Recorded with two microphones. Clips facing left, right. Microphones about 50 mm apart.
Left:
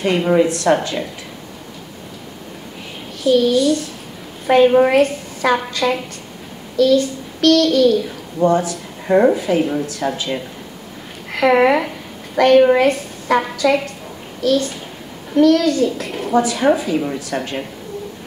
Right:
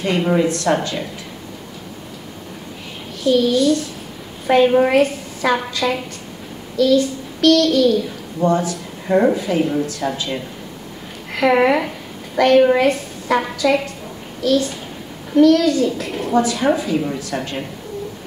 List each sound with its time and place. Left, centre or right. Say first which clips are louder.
0.0 s a child's voice: left 2 dB; centre
3.3 s a child's voice: left 1 dB; centre